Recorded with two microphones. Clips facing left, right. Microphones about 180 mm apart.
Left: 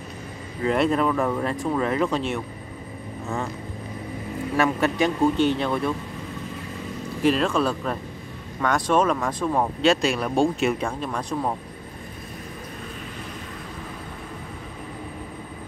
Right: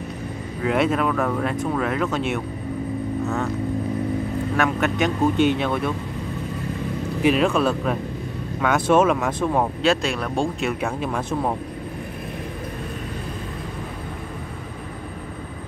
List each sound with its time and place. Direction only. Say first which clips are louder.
0.7 s speech: even; centre (ahead or behind)
4.6 s speech: left 1 dB; centre (ahead or behind)
7.2 s speech: right 2 dB; 5° right (ahead or behind)